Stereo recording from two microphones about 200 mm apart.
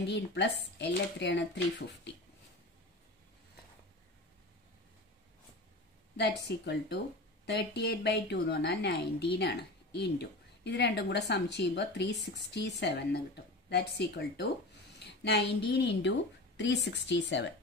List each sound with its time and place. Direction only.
0.0 s a woman's voice: 60° left (ahead or behind)
6.1 s a woman's voice: 55° left (ahead or behind)